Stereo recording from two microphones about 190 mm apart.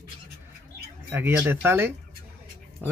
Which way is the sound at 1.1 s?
10° right (ahead or behind).